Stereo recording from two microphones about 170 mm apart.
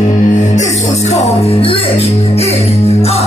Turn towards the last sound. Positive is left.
turn(degrees=35)  # may be behind; listen again after turning